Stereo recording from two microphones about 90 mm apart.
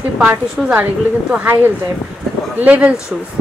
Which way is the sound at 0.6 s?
15° right (ahead or behind).